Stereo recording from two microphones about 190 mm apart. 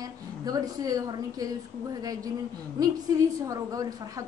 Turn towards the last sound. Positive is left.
turn(degrees=-20)  # may be behind; listen again after turning